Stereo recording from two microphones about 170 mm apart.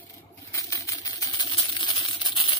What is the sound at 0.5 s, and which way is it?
Typewriter, 20° left (ahead or behind).